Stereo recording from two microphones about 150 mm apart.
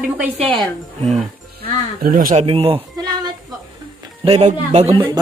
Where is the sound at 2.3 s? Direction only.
40° right (ahead or behind).